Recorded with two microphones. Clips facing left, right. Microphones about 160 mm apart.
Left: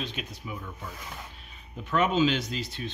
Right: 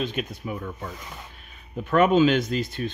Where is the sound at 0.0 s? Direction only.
50° right (ahead or behind).